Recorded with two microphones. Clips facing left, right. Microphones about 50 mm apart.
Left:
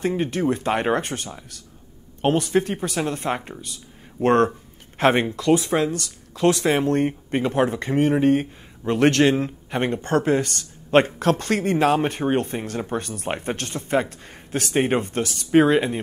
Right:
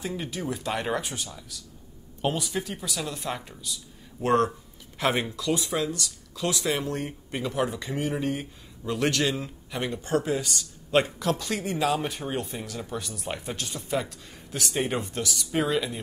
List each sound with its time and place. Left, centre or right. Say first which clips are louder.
0.0 s speech: left 10 dB; left